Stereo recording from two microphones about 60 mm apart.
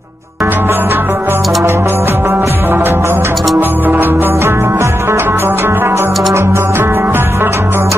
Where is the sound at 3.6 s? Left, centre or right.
Right.